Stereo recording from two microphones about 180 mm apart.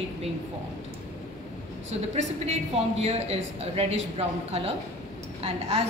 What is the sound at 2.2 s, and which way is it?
A man's voice, 35° right (ahead or behind).